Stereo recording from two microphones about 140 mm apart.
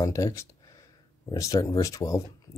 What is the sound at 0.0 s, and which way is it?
Speech, 25° left (ahead or behind).